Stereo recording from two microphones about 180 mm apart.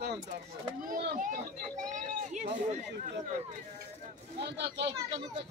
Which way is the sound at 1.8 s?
45° right (ahead or behind).